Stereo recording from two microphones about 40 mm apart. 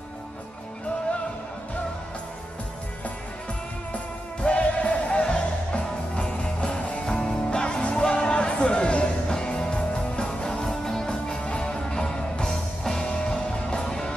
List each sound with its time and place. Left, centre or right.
4.4 s music: left; by 13.1 s centre
13.1 s music: left